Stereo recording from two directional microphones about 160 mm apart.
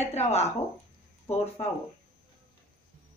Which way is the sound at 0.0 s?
40° left (ahead or behind).